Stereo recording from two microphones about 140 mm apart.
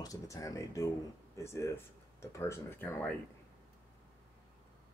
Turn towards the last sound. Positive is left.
turn(degrees=15)  # may be behind; listen again after turning